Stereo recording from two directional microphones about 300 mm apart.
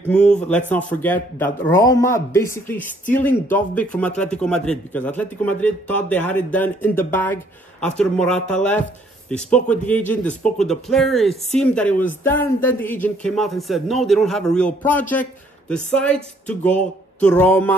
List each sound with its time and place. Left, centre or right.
0.1 s speech: centre